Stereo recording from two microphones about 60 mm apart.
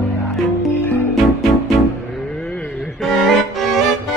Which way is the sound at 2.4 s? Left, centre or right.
Centre.